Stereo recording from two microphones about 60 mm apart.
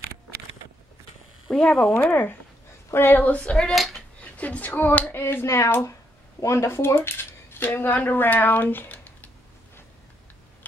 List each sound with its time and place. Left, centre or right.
1.5 s a woman's voice: centre
3.4 s speech: centre
3.7 s speech: centre
4.2 s speech: left
5.1 s speech: left